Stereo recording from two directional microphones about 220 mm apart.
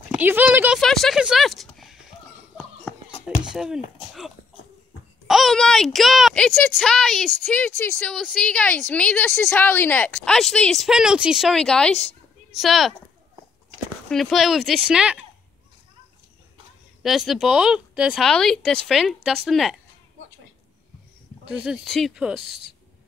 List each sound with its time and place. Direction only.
0.1 s speech: 10° right (ahead or behind)
2.5 s a sound: centre (ahead or behind)
5.2 s speech: centre (ahead or behind)
14.0 s speech: centre (ahead or behind)
17.0 s speech: centre (ahead or behind)
21.5 s speech: centre (ahead or behind)
22.4 s speech: 45° left (ahead or behind)